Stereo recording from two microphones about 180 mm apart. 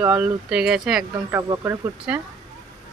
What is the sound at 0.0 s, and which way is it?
Speech, 5° right (ahead or behind).